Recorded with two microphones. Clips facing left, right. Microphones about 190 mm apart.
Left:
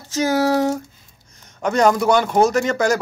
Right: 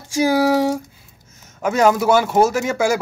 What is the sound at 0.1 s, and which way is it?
Speech, 10° right (ahead or behind).